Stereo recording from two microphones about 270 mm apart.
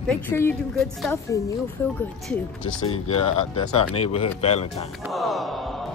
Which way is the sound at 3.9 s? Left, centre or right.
Left.